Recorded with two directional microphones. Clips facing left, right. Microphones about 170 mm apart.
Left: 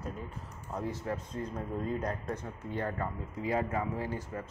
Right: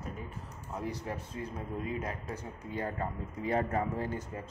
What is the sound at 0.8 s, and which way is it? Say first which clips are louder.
Speech: left 2 dB; 15° right (ahead or behind).